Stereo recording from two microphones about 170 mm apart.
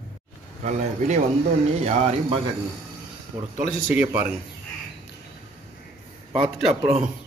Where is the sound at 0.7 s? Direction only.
45° right (ahead or behind).